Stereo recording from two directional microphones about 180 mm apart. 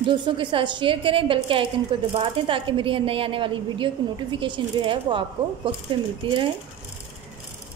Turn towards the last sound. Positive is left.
turn(degrees=-25)  # may be behind; listen again after turning